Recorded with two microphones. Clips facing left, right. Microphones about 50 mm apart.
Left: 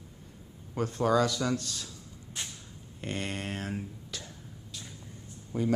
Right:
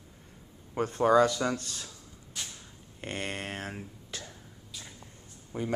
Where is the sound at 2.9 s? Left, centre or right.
Centre.